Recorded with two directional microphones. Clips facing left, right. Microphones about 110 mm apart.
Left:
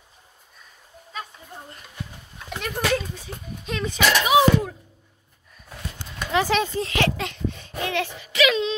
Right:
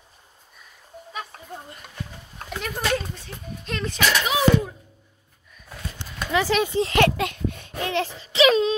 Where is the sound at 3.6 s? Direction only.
5° left (ahead or behind).